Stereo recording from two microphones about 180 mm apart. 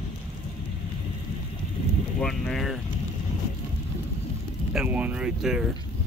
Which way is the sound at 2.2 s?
Centre (ahead or behind).